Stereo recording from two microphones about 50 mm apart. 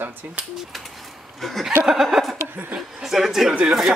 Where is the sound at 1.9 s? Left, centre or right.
Centre.